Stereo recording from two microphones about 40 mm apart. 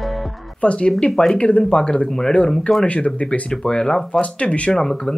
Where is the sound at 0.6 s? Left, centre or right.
Left.